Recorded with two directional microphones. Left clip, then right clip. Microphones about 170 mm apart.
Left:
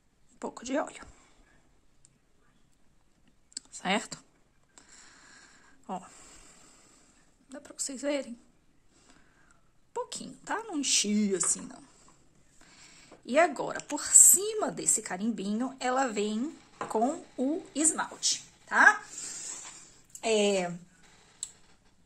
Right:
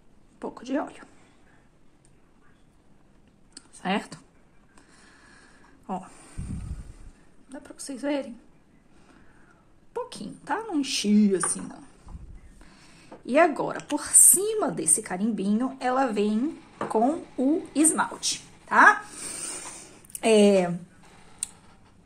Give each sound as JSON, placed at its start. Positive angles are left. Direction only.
{"t": 0.4, "sound": "speech", "side_deg": 30}
{"t": 3.5, "sound": "clicking", "side_deg": 30}
{"t": 4.7, "sound": "a sound", "side_deg": 30}
{"t": 7.4, "sound": "a woman's voice", "side_deg": 35}
{"t": 9.9, "sound": "speech", "side_deg": 25}
{"t": 20.1, "sound": "a sound", "side_deg": -20}
{"t": 20.3, "sound": "a woman's voice", "side_deg": 0}